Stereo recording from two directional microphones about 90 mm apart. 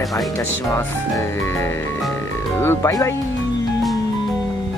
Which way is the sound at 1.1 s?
30° left (ahead or behind).